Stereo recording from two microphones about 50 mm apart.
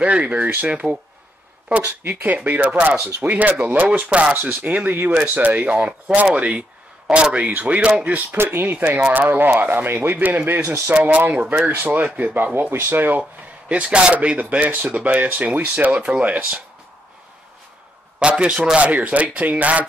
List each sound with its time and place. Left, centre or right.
0.0 s speech: right
2.0 s speech: right
8.4 s speech: right
12.7 s speech: right
13.7 s speech: right
18.2 s speech: right